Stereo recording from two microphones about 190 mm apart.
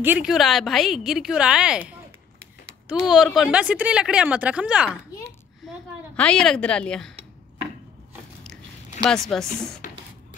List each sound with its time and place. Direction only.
0.0 s a woman's voice: 5° right (ahead or behind)
5.6 s a sound: centre (ahead or behind)
6.1 s a woman's voice: 5° left (ahead or behind)
9.0 s a woman's voice: 5° left (ahead or behind)
9.8 s music: 40° left (ahead or behind)